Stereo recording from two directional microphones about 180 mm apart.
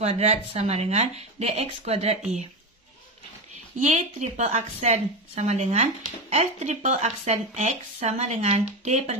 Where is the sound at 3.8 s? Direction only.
40° right (ahead or behind).